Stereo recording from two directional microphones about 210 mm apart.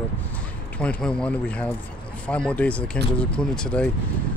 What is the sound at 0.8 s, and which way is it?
Speech, 5° left (ahead or behind).